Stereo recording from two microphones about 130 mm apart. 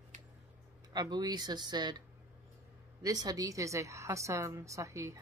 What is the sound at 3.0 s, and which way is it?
A woman's voice, 30° right (ahead or behind).